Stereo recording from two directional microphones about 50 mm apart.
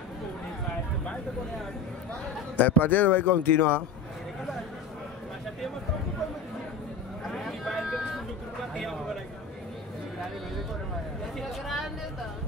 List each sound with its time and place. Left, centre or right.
2.5 s speech: left
7.2 s a sound: centre
11.3 s speech: centre